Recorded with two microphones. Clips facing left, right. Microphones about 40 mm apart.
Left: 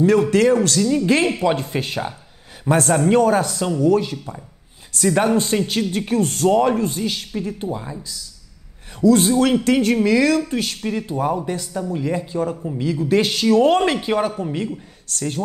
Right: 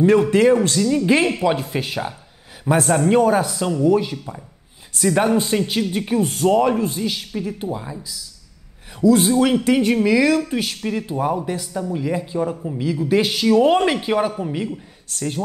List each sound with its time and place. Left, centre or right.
0.0 s a man's voice: right
0.8 s a man's voice: centre
15.1 s speech: centre